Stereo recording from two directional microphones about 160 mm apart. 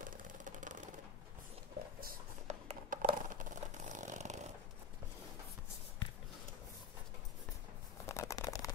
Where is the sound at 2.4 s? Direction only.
50° right (ahead or behind).